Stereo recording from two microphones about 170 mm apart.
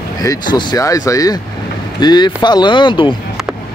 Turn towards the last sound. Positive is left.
turn(degrees=30)  # may be behind; listen again after turning